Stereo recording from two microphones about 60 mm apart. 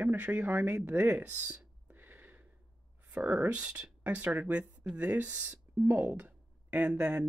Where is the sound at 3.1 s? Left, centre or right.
Right.